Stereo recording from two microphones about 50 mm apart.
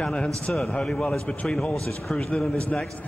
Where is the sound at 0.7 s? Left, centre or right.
Centre.